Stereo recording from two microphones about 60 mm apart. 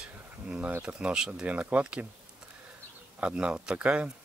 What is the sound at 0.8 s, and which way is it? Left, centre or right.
Speech, centre.